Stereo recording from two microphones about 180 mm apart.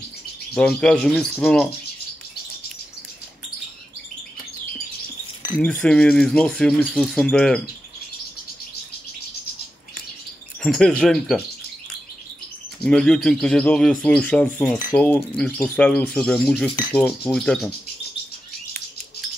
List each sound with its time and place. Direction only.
0.6 s speech: 5° left (ahead or behind)
5.6 s speech: 5° left (ahead or behind)
10.6 s speech: 5° left (ahead or behind)
12.8 s speech: 5° left (ahead or behind)